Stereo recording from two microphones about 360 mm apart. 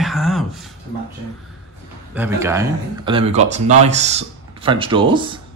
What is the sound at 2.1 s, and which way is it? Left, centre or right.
Speech, centre.